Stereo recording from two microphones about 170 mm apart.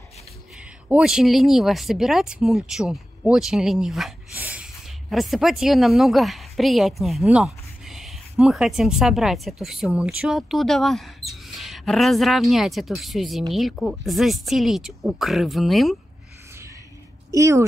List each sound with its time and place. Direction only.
0.8 s speech: 5° right (ahead or behind)
17.3 s speech: 20° right (ahead or behind)